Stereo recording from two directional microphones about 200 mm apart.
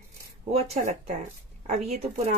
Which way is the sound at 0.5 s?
30° right (ahead or behind).